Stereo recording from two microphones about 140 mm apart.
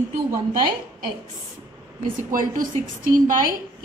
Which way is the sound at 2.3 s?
75° right (ahead or behind).